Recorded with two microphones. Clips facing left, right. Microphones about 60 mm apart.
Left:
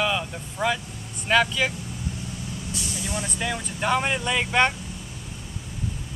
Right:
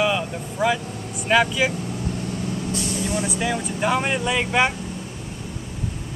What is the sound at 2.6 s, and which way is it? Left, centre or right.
Vehicle, right.